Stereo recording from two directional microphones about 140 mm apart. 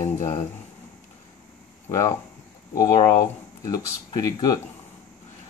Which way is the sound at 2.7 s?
25° left (ahead or behind).